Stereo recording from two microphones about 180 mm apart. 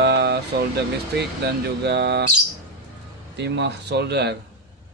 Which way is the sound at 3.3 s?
70° right (ahead or behind).